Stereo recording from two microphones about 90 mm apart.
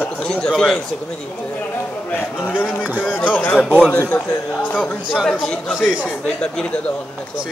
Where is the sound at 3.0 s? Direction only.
15° left (ahead or behind).